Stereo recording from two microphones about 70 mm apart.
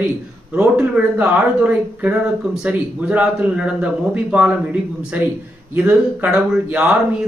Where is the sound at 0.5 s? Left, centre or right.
Right.